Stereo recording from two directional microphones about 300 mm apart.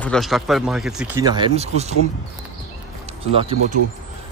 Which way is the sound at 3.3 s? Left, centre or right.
Centre.